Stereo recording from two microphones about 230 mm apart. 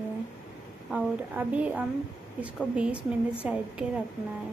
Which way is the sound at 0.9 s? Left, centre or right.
Centre.